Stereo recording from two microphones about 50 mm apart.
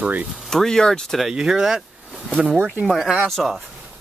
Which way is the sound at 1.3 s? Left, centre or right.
Centre.